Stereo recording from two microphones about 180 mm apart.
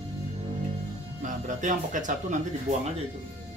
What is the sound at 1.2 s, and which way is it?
Speech, 45° right (ahead or behind).